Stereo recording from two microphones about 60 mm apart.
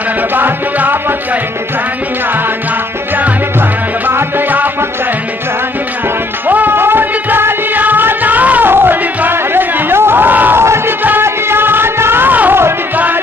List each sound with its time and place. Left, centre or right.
0.4 s music: right
4.1 s music: right
6.4 s music: right